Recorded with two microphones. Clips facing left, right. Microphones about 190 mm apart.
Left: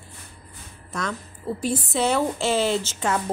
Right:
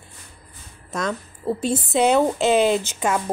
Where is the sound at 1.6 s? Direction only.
20° right (ahead or behind).